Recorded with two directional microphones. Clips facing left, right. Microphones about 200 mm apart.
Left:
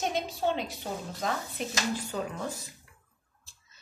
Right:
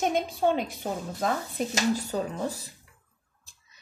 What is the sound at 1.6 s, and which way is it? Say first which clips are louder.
A woman's voice: right 8 dB; 40° right (ahead or behind).